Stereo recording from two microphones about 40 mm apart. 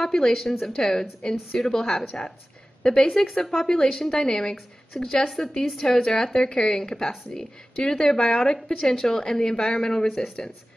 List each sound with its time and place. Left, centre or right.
0.0 s a woman's voice: centre
3.1 s a woman's voice: centre